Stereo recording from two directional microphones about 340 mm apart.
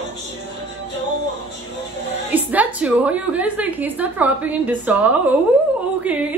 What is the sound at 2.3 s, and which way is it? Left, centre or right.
A woman's voice, centre.